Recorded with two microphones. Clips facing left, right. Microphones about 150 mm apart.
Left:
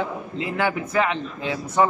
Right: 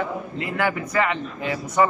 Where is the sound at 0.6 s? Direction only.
15° left (ahead or behind).